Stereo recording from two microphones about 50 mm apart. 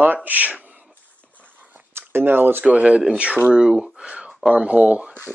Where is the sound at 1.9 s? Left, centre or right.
Right.